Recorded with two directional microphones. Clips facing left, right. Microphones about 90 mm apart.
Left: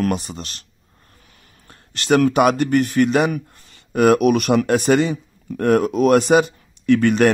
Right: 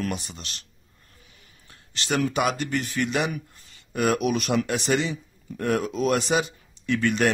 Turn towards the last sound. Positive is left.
turn(degrees=55)  # may be behind; listen again after turning